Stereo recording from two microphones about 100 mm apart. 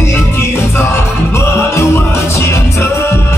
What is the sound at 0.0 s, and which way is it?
Music, 25° left (ahead or behind).